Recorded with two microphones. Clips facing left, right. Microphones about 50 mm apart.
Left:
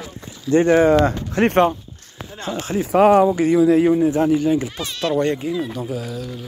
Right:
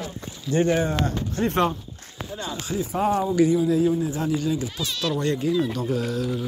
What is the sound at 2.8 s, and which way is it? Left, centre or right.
Speech, left.